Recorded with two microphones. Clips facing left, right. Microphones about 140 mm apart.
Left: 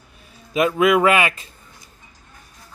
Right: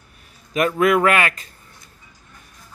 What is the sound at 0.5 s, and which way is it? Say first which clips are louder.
Speech: left 1 dB; 15° left (ahead or behind).